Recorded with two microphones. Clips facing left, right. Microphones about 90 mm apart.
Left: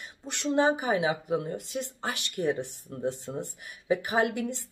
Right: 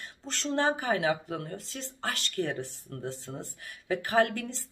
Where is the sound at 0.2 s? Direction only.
15° left (ahead or behind).